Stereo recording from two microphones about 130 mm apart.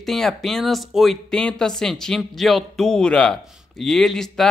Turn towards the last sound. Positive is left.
turn(degrees=5)  # may be behind; listen again after turning